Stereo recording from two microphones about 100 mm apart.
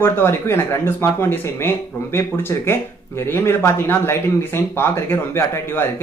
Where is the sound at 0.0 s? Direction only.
25° left (ahead or behind).